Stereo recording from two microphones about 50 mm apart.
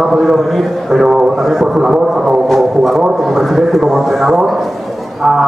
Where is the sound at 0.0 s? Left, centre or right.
Centre.